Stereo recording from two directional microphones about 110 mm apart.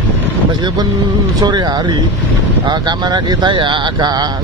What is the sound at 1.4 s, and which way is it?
Speech, 40° right (ahead or behind).